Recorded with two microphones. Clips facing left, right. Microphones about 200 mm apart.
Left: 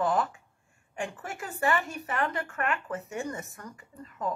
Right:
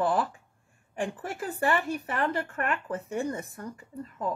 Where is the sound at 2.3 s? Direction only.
30° right (ahead or behind).